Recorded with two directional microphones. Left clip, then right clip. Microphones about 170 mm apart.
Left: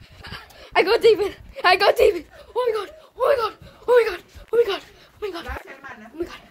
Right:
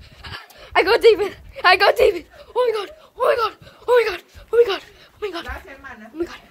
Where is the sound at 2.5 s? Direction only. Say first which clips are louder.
Right 3 dB; 20° right (ahead or behind).